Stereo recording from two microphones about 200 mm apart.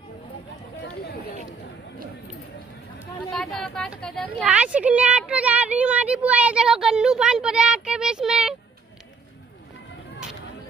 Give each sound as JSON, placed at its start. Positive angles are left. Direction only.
{"t": 0.7, "sound": "chatter", "side_deg": 60}
{"t": 3.3, "sound": "speech", "side_deg": 5}